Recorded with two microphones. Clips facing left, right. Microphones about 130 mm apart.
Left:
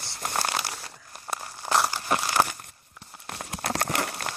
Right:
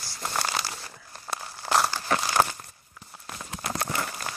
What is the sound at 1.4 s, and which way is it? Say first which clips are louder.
Crumpling: even; centre (ahead or behind).